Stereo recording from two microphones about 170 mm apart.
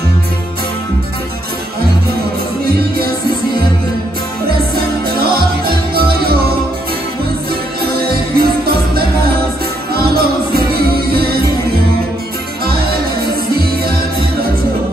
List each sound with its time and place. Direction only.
4.5 s music: 65° right (ahead or behind)
7.8 s music: 65° right (ahead or behind)
12.6 s music: 65° right (ahead or behind)